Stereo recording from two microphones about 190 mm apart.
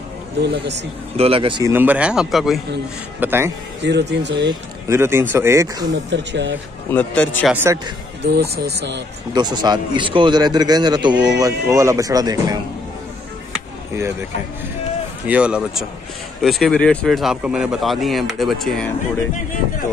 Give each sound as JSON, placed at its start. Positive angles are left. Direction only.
{"t": 0.4, "sound": "speech", "side_deg": -60}
{"t": 1.1, "sound": "a man's voice", "side_deg": -30}
{"t": 1.6, "sound": "speech", "side_deg": -10}
{"t": 3.2, "sound": "speech", "side_deg": -10}
{"t": 3.8, "sound": "speech", "side_deg": -65}
{"t": 4.5, "sound": "speech", "side_deg": -15}
{"t": 6.0, "sound": "speech", "side_deg": -70}
{"t": 6.9, "sound": "a man's voice", "side_deg": 10}
{"t": 7.5, "sound": "speech", "side_deg": -15}
{"t": 8.2, "sound": "speech", "side_deg": -60}
{"t": 9.3, "sound": "a man's voice", "side_deg": -20}
{"t": 15.2, "sound": "speech", "side_deg": -5}